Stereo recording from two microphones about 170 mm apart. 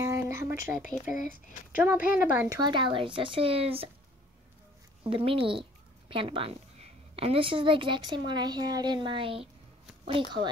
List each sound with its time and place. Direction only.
0.0 s a sound: 20° right (ahead or behind)
1.0 s speech: 55° left (ahead or behind)
1.8 s a woman's voice: 10° right (ahead or behind)
2.5 s speech: 25° right (ahead or behind)
5.0 s speech: 30° right (ahead or behind)